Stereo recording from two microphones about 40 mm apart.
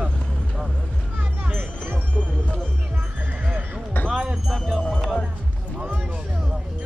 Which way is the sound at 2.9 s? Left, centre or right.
Right.